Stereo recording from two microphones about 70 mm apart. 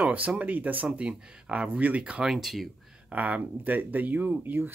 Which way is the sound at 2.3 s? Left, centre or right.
Centre.